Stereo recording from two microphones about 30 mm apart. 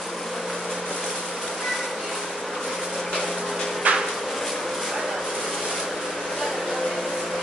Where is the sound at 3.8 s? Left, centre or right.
Right.